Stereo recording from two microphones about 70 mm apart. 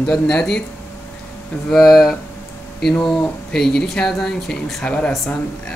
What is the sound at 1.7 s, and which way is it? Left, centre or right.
Speech, centre.